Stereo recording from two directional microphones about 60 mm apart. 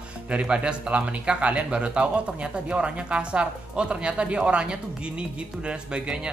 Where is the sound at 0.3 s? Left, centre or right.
Centre.